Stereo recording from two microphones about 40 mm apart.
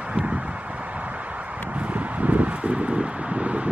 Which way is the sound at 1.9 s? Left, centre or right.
Right.